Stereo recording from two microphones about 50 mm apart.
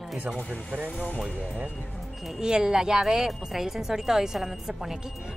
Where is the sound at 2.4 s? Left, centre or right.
Centre.